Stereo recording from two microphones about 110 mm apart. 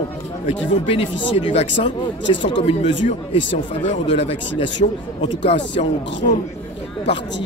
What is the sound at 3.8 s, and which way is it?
Speech, 75° left (ahead or behind).